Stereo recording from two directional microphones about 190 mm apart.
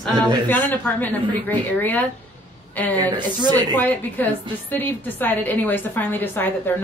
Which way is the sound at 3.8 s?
10° left (ahead or behind).